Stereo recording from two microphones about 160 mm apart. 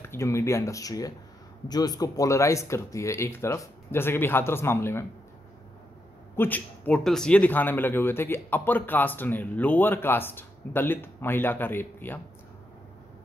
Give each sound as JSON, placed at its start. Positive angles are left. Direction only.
{"t": 0.0, "sound": "a man's voice", "side_deg": 15}
{"t": 6.3, "sound": "a man's voice", "side_deg": 10}